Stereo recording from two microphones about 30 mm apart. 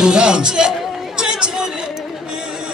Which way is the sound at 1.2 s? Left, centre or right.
Right.